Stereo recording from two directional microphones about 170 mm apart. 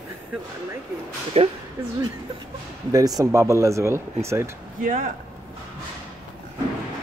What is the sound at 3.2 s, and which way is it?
Speech, 15° right (ahead or behind).